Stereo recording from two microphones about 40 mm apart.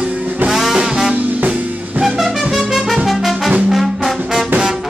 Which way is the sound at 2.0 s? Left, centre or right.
Centre.